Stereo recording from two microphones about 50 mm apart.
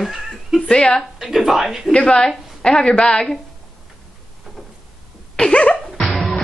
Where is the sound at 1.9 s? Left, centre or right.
Centre.